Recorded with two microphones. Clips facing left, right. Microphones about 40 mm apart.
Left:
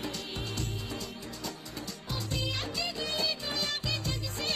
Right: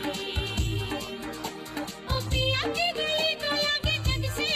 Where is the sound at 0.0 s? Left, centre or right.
Right.